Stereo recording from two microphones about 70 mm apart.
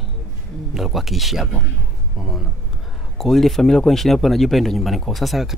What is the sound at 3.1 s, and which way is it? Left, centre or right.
Speech, centre.